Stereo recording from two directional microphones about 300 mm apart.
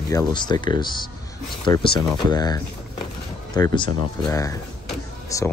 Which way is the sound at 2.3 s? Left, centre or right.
Centre.